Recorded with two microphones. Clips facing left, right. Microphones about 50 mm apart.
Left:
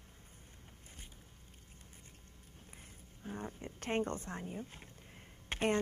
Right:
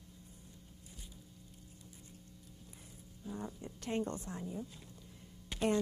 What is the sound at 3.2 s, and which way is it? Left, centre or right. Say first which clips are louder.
A woman's voice: even; left.